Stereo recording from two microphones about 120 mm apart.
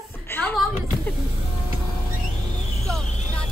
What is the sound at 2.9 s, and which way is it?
Vehicle, 5° left (ahead or behind).